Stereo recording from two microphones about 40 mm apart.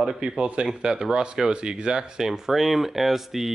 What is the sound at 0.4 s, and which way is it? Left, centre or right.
Speech, right.